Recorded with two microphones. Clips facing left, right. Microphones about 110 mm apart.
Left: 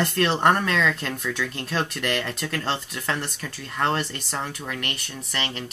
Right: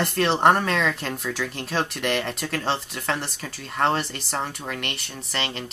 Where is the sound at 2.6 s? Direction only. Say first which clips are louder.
Right 3 dB; centre (ahead or behind).